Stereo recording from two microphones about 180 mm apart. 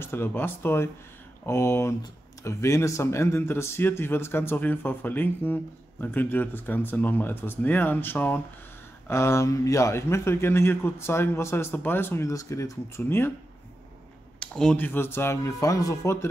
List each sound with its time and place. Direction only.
0.0 s speech: 10° left (ahead or behind)
14.4 s speech: 5° left (ahead or behind)